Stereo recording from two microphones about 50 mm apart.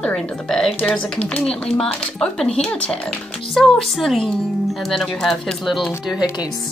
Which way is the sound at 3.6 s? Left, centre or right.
Centre.